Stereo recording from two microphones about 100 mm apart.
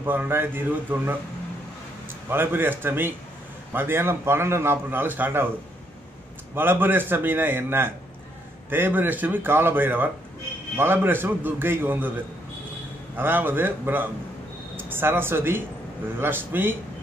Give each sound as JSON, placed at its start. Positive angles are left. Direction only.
{"t": 0.0, "sound": "a man's voice", "side_deg": -20}
{"t": 2.2, "sound": "a man's voice", "side_deg": -20}
{"t": 6.5, "sound": "a man's voice", "side_deg": -20}
{"t": 13.1, "sound": "a man's voice", "side_deg": -20}